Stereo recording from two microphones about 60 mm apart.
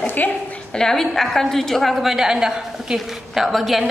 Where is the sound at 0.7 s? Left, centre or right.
Centre.